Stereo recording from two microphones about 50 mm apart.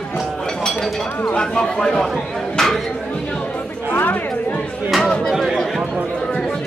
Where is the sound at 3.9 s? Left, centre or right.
Left.